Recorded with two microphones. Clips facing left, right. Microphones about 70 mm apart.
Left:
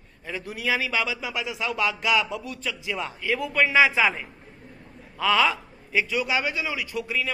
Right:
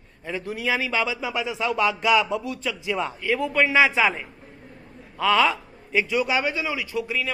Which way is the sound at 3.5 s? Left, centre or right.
Centre.